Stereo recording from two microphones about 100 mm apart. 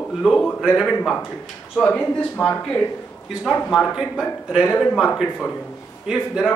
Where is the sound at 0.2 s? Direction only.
Centre (ahead or behind).